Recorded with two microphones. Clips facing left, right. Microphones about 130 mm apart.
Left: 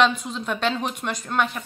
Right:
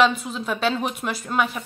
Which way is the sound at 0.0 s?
5° right (ahead or behind).